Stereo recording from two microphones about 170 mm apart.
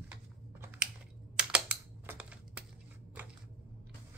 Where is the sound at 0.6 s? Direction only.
10° right (ahead or behind).